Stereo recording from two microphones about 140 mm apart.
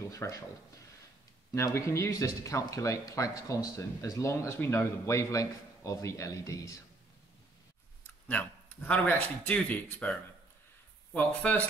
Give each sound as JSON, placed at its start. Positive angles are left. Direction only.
{"t": 0.1, "sound": "speech", "side_deg": 25}
{"t": 1.5, "sound": "speech", "side_deg": 20}
{"t": 8.3, "sound": "speech", "side_deg": 10}
{"t": 11.1, "sound": "speech", "side_deg": 10}